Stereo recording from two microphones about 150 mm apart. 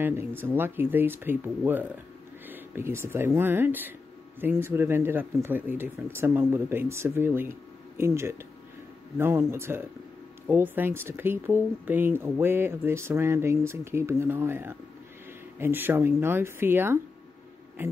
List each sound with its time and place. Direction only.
0.0 s a man's voice: 15° right (ahead or behind)